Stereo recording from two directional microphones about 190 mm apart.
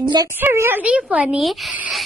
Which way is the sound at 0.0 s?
25° right (ahead or behind).